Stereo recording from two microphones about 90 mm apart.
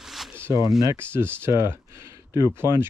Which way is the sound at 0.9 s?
25° right (ahead or behind).